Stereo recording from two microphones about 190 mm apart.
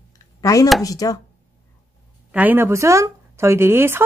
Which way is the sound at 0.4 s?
20° left (ahead or behind).